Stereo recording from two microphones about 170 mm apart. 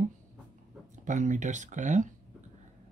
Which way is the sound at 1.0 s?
45° right (ahead or behind).